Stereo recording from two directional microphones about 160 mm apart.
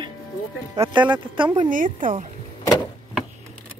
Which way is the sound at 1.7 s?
55° right (ahead or behind).